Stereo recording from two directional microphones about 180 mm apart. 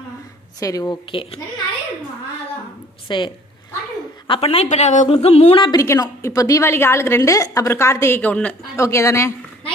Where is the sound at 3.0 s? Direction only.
25° left (ahead or behind).